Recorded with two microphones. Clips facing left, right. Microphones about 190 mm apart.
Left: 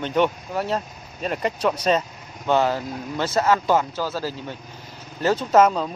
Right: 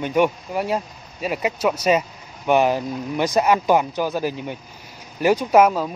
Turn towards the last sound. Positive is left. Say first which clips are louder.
# right 1 dB
turn(degrees=-10)  # may be behind; listen again after turning